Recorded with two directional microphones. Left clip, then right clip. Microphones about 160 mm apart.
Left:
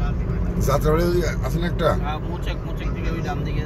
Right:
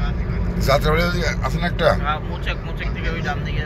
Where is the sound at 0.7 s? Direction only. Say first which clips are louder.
Right 2 dB; 30° left (ahead or behind).